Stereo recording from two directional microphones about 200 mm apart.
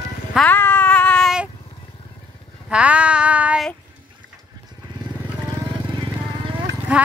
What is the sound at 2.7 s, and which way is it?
Child singing, 5° right (ahead or behind).